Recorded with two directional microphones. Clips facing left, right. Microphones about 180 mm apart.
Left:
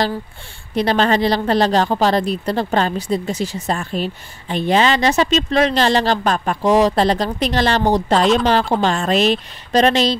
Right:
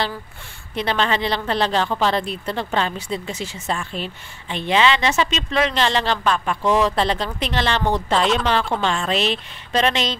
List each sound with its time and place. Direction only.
0.7 s speech: 40° left (ahead or behind)